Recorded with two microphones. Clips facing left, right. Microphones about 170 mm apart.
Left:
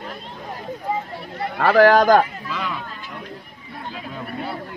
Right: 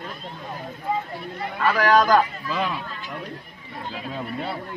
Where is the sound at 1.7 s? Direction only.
50° left (ahead or behind).